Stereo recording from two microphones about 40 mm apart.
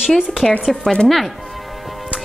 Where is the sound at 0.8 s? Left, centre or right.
Centre.